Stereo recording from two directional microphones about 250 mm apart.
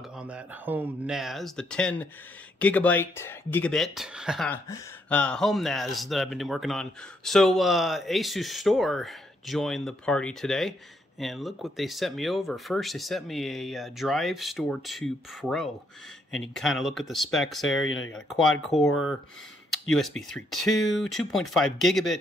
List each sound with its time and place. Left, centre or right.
0.2 s speech: centre
17.8 s speech: left
18.1 s speech: centre
19.7 s speech: centre